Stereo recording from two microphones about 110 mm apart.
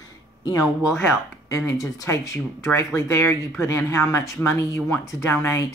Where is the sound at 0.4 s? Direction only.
35° left (ahead or behind).